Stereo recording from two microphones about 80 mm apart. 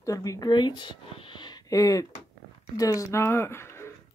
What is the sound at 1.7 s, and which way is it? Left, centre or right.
Speech, left.